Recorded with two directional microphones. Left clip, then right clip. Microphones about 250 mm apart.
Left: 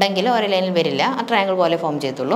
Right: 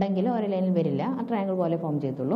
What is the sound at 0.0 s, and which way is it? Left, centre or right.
A woman's voice, centre.